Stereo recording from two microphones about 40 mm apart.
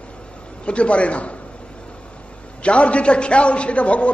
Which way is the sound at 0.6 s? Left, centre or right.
Left.